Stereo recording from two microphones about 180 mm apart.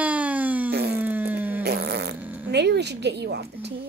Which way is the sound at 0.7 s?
65° right (ahead or behind).